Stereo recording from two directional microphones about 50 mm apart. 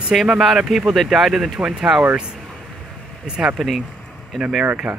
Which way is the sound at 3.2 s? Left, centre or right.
Centre.